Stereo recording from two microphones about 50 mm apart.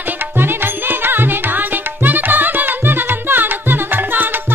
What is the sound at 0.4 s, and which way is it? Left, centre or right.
Music, right.